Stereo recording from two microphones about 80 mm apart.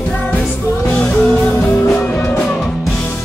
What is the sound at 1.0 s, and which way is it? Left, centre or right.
Music, centre.